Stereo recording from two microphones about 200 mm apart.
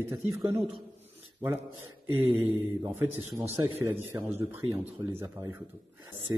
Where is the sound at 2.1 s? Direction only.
10° right (ahead or behind).